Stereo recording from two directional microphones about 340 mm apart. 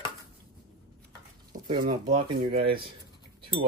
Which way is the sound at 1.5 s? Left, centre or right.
Centre.